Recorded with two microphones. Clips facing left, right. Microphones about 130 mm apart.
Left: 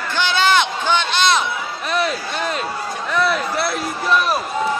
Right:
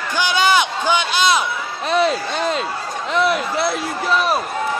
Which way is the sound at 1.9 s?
30° right (ahead or behind).